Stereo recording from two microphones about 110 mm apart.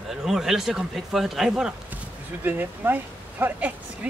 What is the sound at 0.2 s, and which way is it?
Speech, 5° right (ahead or behind).